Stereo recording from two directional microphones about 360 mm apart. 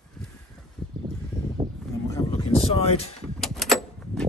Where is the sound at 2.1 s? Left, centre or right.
Centre.